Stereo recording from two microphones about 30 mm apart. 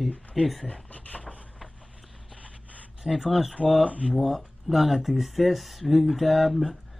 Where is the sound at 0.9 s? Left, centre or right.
Left.